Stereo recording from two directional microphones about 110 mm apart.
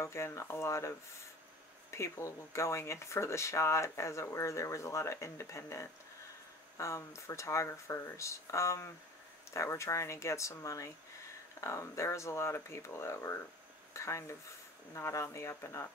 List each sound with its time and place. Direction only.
0.0 s speech: 25° left (ahead or behind)